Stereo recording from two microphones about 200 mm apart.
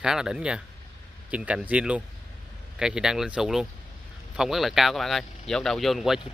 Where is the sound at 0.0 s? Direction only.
5° right (ahead or behind).